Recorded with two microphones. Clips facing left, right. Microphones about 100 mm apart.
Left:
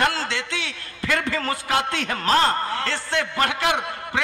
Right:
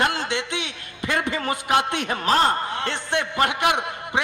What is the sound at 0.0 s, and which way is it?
A man's voice, 20° right (ahead or behind).